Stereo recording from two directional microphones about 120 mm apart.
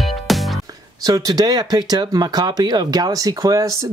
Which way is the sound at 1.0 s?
30° right (ahead or behind).